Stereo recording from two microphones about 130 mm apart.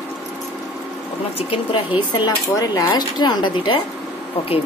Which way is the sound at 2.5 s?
30° left (ahead or behind).